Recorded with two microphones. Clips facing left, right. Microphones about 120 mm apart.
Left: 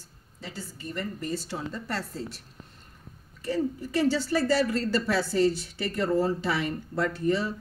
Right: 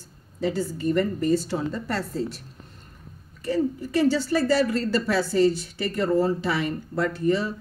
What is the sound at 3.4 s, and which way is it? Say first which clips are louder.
Speech: right 4 dB; 60° right (ahead or behind).